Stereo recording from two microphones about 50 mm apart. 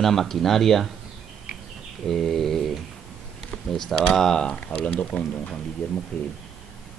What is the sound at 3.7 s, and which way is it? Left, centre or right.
Speech, centre.